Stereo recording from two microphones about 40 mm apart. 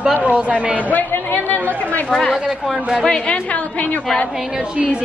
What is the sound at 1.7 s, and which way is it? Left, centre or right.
Speech, left.